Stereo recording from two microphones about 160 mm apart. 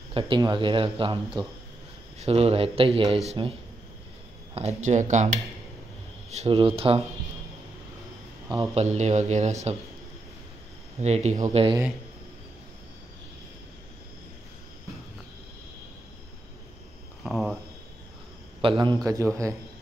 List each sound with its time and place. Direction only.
0.1 s speech: 35° right (ahead or behind)
4.8 s speech: 50° right (ahead or behind)
6.3 s speech: 35° right (ahead or behind)
8.7 s speech: 45° right (ahead or behind)
11.0 s speech: 45° right (ahead or behind)
11.5 s speech: 30° right (ahead or behind)
17.2 s a sound: centre (ahead or behind)
18.6 s speech: 30° right (ahead or behind)
19.0 s a man's voice: 20° right (ahead or behind)